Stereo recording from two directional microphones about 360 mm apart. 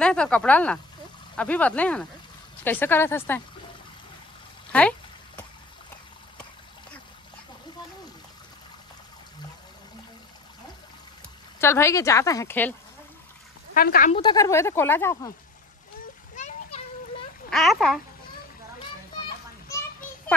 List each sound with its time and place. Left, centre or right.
0.0 s speech: centre
4.7 s a sound: centre
11.6 s speech: centre
13.7 s speech: left; by 15.3 s centre
16.3 s splash: centre
17.5 s speech: centre